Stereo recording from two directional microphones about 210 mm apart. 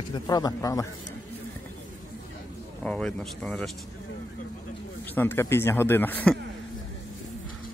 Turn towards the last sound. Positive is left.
turn(degrees=10)  # may be behind; listen again after turning